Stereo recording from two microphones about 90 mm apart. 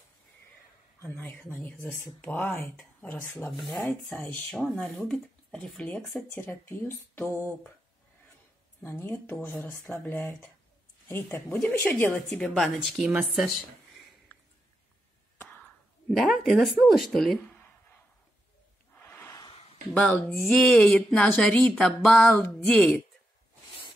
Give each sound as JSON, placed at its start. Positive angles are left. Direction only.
{"t": 1.0, "sound": "speech", "side_deg": 20}
{"t": 3.5, "sound": "speech", "side_deg": 5}
{"t": 4.2, "sound": "speech", "side_deg": 20}
{"t": 4.5, "sound": "speech", "side_deg": 5}
{"t": 6.3, "sound": "speech", "side_deg": 25}
{"t": 8.8, "sound": "speech", "side_deg": 25}
{"t": 12.3, "sound": "speech", "side_deg": 5}
{"t": 15.5, "sound": "whispering", "side_deg": 15}
{"t": 16.2, "sound": "speech", "side_deg": 0}
{"t": 18.9, "sound": "a sound", "side_deg": 20}
{"t": 19.4, "sound": "a sound", "side_deg": 85}
{"t": 19.9, "sound": "speech", "side_deg": 15}